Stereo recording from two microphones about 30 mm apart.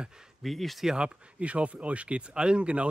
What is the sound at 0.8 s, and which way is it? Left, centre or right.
Speech, right.